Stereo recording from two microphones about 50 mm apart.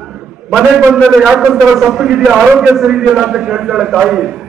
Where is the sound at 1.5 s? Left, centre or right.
Centre.